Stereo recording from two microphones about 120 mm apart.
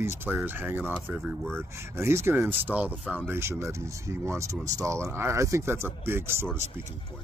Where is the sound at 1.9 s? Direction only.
20° right (ahead or behind).